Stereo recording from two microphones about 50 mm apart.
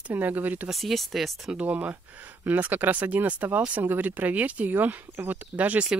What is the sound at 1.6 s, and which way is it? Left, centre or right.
Speech, right.